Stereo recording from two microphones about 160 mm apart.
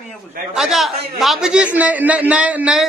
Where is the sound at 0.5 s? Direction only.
Centre (ahead or behind).